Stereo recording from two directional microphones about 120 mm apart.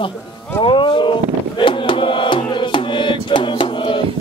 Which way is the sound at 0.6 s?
40° left (ahead or behind).